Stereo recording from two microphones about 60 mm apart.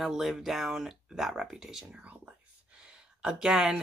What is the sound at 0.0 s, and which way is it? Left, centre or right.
Speech, centre.